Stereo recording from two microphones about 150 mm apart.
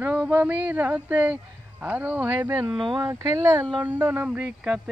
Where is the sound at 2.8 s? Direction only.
35° right (ahead or behind).